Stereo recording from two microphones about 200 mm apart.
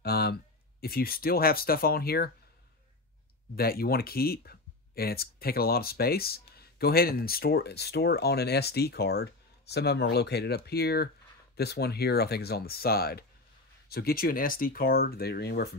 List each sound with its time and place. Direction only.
0.0 s speech: 50° left (ahead or behind)
3.5 s speech: 50° left (ahead or behind)